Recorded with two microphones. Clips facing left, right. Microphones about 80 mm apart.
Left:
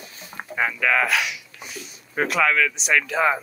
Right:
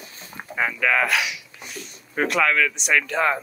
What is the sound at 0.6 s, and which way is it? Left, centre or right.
Speech, centre.